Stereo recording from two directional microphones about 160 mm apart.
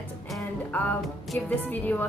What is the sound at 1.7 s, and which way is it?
Speech, 10° left (ahead or behind).